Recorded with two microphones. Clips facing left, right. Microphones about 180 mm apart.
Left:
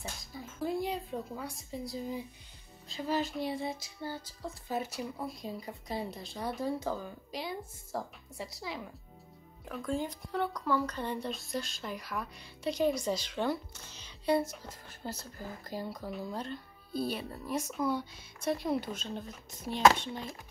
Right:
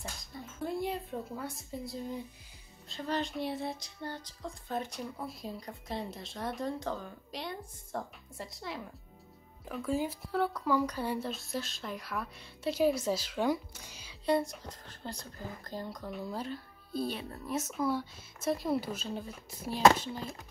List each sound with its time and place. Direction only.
0.3 s a woman's voice: centre (ahead or behind)
14.2 s speech: centre (ahead or behind)